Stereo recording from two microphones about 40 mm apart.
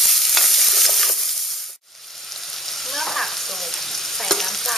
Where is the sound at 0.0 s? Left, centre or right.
Centre.